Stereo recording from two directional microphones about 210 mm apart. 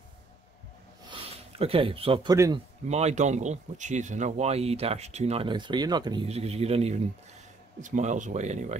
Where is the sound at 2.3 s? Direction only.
15° right (ahead or behind).